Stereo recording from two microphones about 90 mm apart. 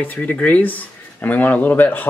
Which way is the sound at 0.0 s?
20° left (ahead or behind).